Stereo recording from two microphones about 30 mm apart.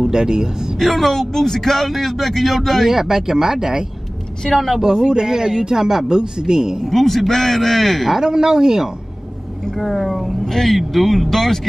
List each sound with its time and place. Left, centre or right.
0.0 s a man's voice: right
0.7 s a man's voice: centre
2.9 s speech: centre
4.5 s a man's voice: centre
4.8 s a man's voice: centre
6.9 s a man's voice: centre
8.2 s speech: centre
9.8 s a man's voice: centre